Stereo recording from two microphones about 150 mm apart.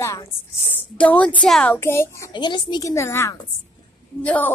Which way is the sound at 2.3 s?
30° left (ahead or behind).